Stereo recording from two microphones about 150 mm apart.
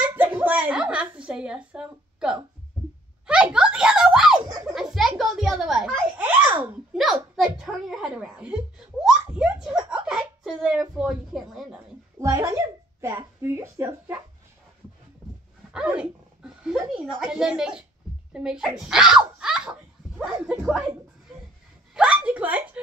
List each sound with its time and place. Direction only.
0.1 s a sound: 15° right (ahead or behind)
4.7 s a child's voice: centre (ahead or behind)
7.0 s a child's voice: centre (ahead or behind)
12.2 s speech: 20° right (ahead or behind)
15.7 s a child's voice: 5° right (ahead or behind)
21.9 s a woman's voice: 5° right (ahead or behind)